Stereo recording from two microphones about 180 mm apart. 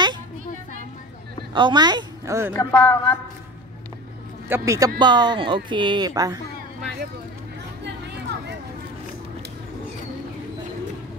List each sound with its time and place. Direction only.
1.5 s a woman's voice: 25° right (ahead or behind)
2.5 s speech: 10° left (ahead or behind)
4.5 s speech: 20° right (ahead or behind)
7.8 s a sound: 70° right (ahead or behind)